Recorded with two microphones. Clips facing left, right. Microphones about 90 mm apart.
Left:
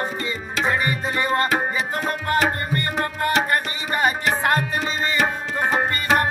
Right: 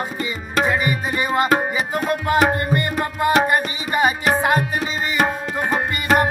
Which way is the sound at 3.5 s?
15° right (ahead or behind).